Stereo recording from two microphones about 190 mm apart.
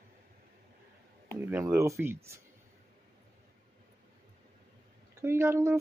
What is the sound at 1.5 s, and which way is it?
Speech, 15° right (ahead or behind).